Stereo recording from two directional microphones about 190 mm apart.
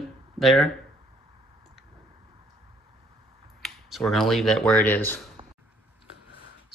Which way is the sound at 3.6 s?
Centre (ahead or behind).